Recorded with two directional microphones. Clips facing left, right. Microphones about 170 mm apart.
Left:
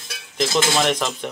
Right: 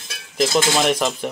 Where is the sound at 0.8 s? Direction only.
Centre (ahead or behind).